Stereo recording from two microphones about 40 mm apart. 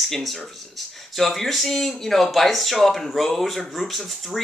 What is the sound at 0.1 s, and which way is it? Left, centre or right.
Speech, centre.